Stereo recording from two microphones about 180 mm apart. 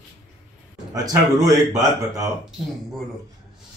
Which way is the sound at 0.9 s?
20° right (ahead or behind).